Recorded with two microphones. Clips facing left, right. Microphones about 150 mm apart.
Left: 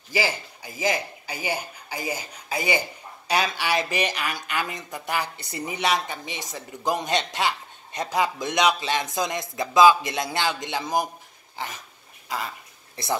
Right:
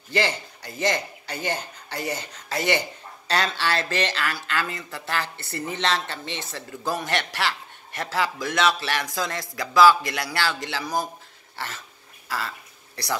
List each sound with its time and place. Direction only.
0.1 s a man's voice: 10° left (ahead or behind)
11.5 s dog: 15° left (ahead or behind)
12.3 s a sound: 15° left (ahead or behind)